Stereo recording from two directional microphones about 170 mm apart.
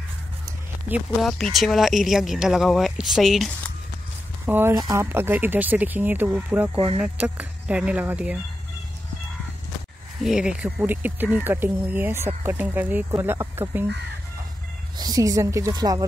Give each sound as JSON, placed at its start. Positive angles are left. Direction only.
{"t": 0.8, "sound": "speech", "side_deg": -10}
{"t": 4.5, "sound": "speech", "side_deg": -15}
{"t": 10.2, "sound": "speech", "side_deg": -5}
{"t": 15.0, "sound": "speech", "side_deg": -20}